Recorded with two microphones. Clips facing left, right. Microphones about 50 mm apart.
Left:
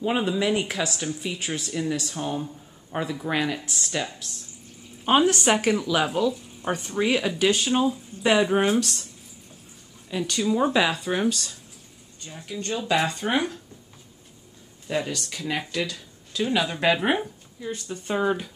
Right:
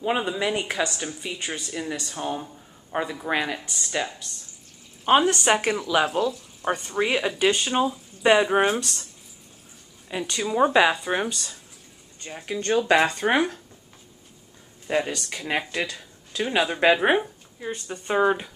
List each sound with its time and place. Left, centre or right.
0.0 s speech: centre
10.0 s speech: centre
12.2 s speech: right
14.9 s speech: right